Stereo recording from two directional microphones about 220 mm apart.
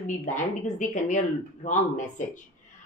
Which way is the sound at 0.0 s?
35° left (ahead or behind).